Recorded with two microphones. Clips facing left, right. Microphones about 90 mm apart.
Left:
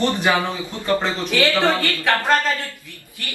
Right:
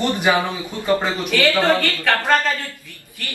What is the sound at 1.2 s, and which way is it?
Speech, 20° left (ahead or behind).